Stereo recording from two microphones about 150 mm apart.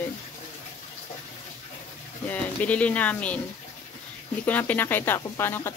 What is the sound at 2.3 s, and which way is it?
Speech, 10° left (ahead or behind).